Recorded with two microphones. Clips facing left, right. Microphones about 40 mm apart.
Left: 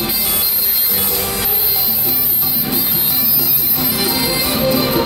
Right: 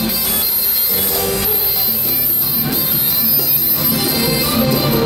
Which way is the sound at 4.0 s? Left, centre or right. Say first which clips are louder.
Even; left.